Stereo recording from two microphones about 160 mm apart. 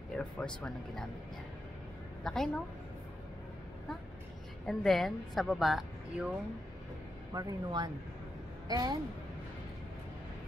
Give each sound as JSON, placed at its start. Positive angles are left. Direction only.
{"t": 0.1, "sound": "a woman's voice", "side_deg": 5}
{"t": 2.2, "sound": "a woman's voice", "side_deg": 5}
{"t": 4.6, "sound": "a woman's voice", "side_deg": 0}
{"t": 7.3, "sound": "a woman's voice", "side_deg": -25}